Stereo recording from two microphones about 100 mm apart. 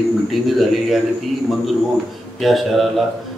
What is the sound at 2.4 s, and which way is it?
Speech, centre (ahead or behind).